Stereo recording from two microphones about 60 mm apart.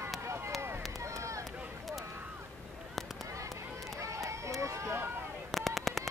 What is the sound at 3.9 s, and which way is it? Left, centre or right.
Run, right.